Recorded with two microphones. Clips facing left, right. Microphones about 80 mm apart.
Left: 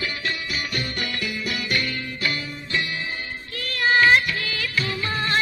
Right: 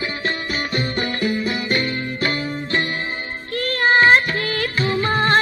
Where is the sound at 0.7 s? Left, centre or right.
Right.